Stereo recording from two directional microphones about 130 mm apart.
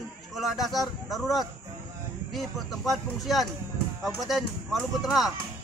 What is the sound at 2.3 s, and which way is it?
A man's voice, centre (ahead or behind).